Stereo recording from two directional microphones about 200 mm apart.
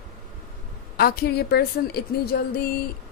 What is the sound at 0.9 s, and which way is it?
A woman's voice, 50° left (ahead or behind).